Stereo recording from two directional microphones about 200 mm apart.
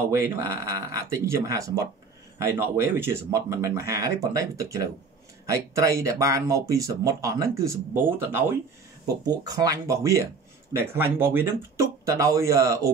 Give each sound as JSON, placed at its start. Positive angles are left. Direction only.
{"t": 0.1, "sound": "speech", "side_deg": -15}